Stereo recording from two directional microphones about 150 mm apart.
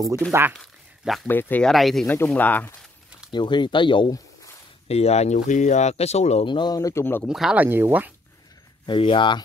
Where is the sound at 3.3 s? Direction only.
30° left (ahead or behind).